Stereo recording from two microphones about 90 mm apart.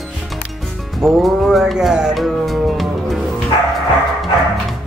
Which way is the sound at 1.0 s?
5° right (ahead or behind).